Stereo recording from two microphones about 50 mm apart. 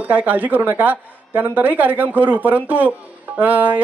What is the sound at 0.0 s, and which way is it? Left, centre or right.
Speech, right.